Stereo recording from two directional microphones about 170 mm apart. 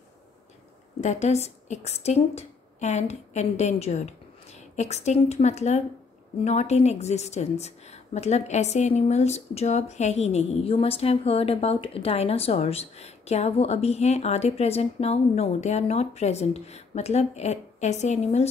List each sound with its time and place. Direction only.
1.0 s a woman's voice: 40° left (ahead or behind)